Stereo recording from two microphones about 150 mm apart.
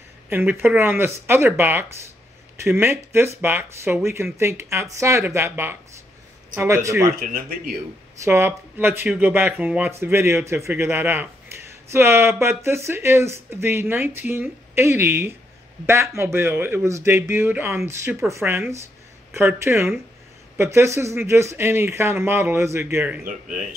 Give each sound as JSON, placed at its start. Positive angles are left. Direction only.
{"t": 0.3, "sound": "speech", "side_deg": -15}
{"t": 7.2, "sound": "speech", "side_deg": -75}
{"t": 8.2, "sound": "speech", "side_deg": -15}
{"t": 23.2, "sound": "speech", "side_deg": -60}